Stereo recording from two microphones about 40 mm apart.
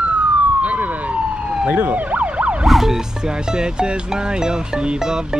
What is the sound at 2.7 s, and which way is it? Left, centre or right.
Music, centre.